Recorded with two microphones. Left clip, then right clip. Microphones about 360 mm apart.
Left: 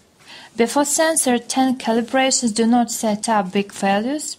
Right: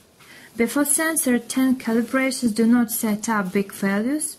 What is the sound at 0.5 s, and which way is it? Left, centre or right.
A woman's voice, centre.